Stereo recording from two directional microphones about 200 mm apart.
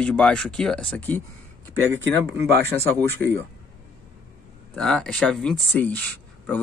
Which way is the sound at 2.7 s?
10° left (ahead or behind).